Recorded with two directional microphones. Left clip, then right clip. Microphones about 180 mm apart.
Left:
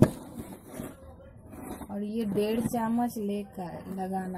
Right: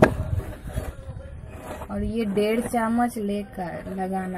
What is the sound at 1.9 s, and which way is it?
Speech, 10° left (ahead or behind).